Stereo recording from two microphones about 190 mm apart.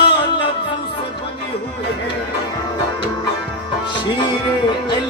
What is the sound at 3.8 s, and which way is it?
Music, 25° left (ahead or behind).